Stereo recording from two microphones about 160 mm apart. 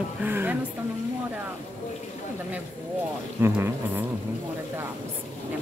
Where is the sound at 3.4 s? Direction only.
15° right (ahead or behind).